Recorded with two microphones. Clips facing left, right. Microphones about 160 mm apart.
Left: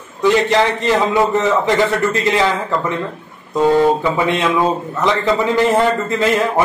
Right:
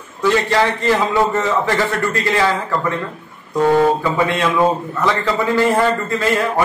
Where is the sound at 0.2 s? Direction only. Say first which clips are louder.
Left 2 dB; 20° left (ahead or behind).